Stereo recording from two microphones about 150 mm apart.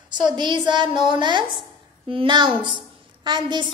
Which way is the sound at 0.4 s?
30° right (ahead or behind).